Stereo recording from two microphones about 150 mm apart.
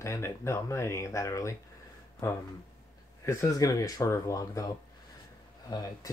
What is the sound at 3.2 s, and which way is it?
Speech, 20° left (ahead or behind).